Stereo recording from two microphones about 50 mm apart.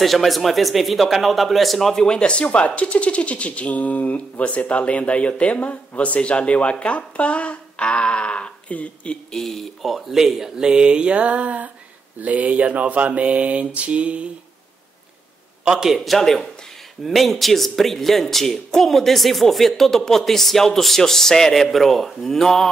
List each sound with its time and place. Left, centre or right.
0.0 s speech: centre
2.0 s speech: centre
9.3 s speech: centre; by 11.7 s right
12.2 s a sound: right
15.6 s a man's voice: centre
16.0 s speech: centre